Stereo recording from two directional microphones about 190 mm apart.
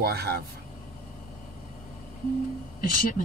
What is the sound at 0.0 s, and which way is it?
Speech, 55° right (ahead or behind).